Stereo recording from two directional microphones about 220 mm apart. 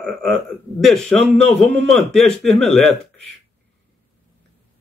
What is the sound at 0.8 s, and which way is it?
Speech, centre (ahead or behind).